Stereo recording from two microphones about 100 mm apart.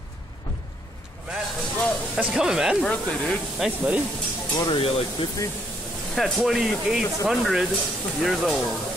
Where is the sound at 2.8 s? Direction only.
10° left (ahead or behind).